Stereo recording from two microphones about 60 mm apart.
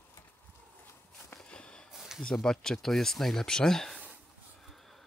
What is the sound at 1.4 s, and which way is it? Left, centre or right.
Walk, centre.